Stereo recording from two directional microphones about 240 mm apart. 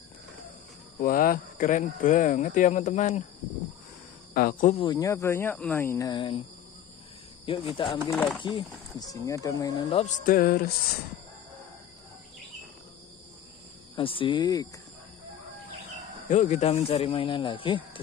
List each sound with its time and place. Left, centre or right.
0.9 s speech: left
4.3 s speech: left
4.7 s speech: centre
7.4 s speech: left
8.1 s speech: centre
8.4 s speech: centre; by 10.6 s left
13.9 s speech: left
16.3 s speech: left